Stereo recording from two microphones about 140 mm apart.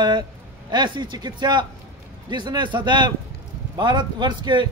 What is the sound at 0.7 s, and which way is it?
A man's voice, 30° right (ahead or behind).